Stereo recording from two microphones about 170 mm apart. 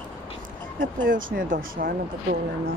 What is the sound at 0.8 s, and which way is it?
Speech, 55° right (ahead or behind).